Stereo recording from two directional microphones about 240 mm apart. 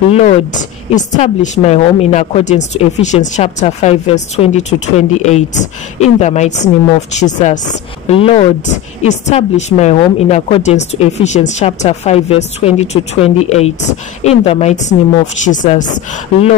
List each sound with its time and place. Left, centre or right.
0.1 s a woman's voice: left